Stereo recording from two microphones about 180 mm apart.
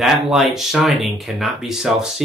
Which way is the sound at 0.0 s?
Centre (ahead or behind).